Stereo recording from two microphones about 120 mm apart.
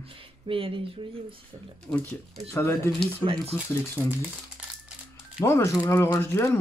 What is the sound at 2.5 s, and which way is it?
Speech, 25° left (ahead or behind).